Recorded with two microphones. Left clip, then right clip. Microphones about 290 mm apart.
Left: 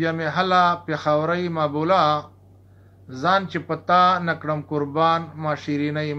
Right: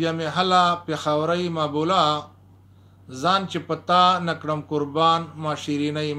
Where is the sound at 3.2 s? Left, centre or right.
Centre.